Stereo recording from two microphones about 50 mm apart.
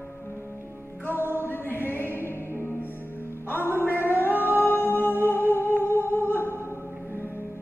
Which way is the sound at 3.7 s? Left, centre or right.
Left.